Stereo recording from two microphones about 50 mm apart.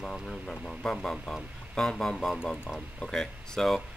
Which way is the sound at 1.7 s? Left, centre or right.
Centre.